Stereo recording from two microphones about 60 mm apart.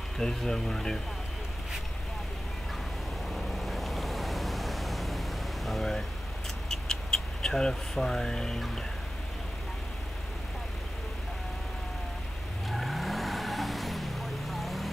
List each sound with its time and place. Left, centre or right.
0.2 s speech: centre
3.3 s vehicle: centre
5.7 s speech: centre
6.7 s a sound: centre
12.6 s vehicle: centre